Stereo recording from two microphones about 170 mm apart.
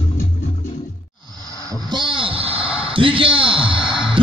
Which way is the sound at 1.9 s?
30° right (ahead or behind).